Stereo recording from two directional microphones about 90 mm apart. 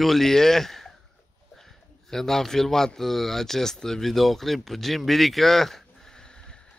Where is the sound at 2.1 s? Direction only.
5° left (ahead or behind).